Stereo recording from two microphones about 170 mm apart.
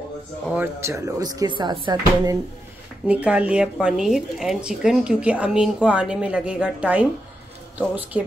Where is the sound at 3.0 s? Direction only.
5° right (ahead or behind).